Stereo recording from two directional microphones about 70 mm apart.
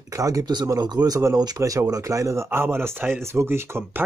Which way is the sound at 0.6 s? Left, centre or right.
Right.